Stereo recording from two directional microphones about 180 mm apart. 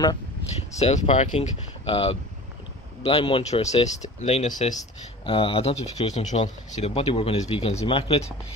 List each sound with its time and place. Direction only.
0.7 s speech: 35° left (ahead or behind)
5.2 s speech: 30° left (ahead or behind)